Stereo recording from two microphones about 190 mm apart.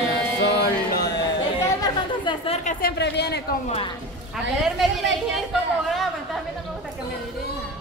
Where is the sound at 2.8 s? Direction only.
60° left (ahead or behind).